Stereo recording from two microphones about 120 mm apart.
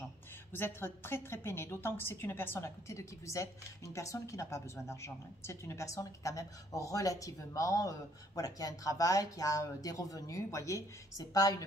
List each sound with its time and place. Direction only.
0.5 s a woman's voice: 20° left (ahead or behind)